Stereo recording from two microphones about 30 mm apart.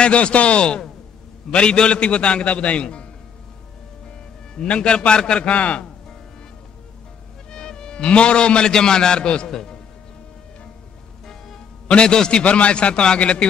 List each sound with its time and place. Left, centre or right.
0.0 s a man's voice: left
4.6 s a man's voice: left
5.5 s a man's voice: left
7.5 s music: left
8.0 s a man's voice: left
11.9 s a man's voice: left
12.4 s a man's voice: left